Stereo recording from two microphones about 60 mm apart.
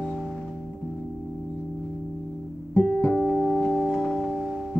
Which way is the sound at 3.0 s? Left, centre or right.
Centre.